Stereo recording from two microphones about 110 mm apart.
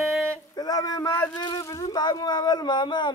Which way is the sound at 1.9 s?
40° left (ahead or behind).